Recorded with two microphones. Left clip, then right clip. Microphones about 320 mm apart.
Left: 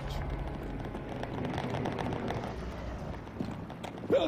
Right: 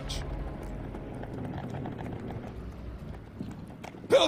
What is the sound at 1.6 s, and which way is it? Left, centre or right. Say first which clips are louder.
Vehicle: left 5 dB; centre.